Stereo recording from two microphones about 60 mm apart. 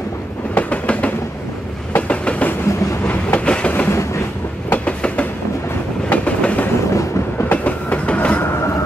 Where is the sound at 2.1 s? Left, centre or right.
Left.